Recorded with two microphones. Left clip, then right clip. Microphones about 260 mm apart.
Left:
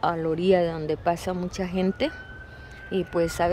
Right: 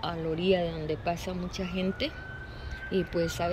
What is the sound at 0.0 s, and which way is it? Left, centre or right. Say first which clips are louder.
Speech: left 7 dB; left.